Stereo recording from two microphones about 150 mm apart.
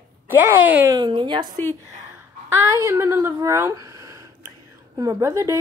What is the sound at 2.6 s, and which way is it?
Speech, 20° right (ahead or behind).